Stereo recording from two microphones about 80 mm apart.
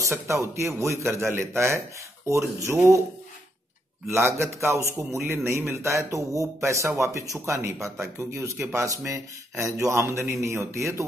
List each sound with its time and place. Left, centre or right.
0.0 s speech: right
4.1 s speech: right